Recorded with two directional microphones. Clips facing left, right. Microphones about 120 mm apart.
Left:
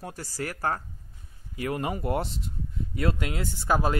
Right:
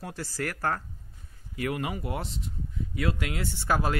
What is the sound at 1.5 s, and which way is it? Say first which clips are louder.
Speech: left 1 dB; 30° left (ahead or behind).